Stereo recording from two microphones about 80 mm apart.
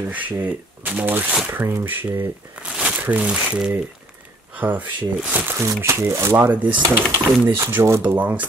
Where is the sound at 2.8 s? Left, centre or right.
Centre.